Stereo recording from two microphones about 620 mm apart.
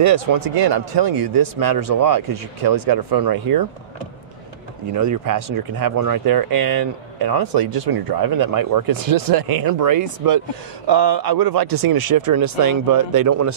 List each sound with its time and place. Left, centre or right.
0.0 s speech: right
4.9 s speech: right